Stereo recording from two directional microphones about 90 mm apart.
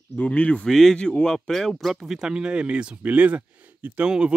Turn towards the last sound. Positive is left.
turn(degrees=-10)  # may be behind; listen again after turning